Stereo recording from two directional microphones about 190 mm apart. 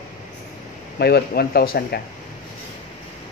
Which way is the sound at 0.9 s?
55° left (ahead or behind).